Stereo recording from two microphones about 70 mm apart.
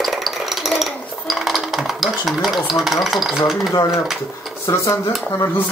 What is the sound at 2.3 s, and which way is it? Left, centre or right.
Speech, centre.